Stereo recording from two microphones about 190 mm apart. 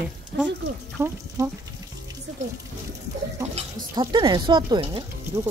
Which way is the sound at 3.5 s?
25° right (ahead or behind).